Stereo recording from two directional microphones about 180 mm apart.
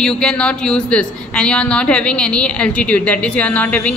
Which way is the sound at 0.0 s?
5° left (ahead or behind).